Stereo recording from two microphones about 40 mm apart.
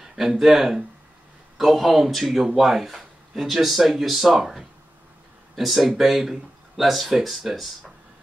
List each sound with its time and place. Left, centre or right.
0.0 s speech: centre